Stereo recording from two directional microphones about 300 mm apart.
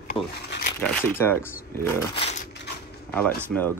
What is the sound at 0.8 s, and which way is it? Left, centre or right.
Speech, centre.